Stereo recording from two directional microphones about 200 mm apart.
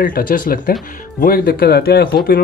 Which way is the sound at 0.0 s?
45° left (ahead or behind).